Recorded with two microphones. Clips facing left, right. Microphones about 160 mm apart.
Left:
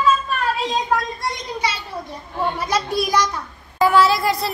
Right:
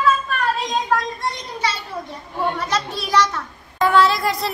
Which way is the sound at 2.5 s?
10° left (ahead or behind).